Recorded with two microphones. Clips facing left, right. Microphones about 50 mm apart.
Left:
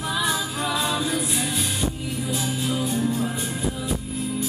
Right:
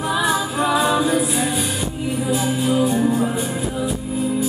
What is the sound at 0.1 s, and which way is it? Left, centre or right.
Music, centre.